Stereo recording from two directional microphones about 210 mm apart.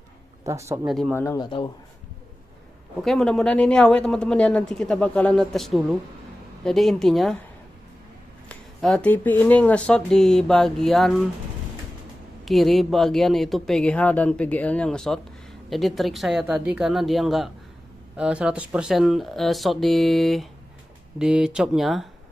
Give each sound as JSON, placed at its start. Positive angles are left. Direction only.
{"t": 0.4, "sound": "speech", "side_deg": -15}
{"t": 0.8, "sound": "speech", "side_deg": 0}
{"t": 1.1, "sound": "speech", "side_deg": 15}
{"t": 3.0, "sound": "speech", "side_deg": 0}
{"t": 8.5, "sound": "speech", "side_deg": 5}
{"t": 12.4, "sound": "speech", "side_deg": 0}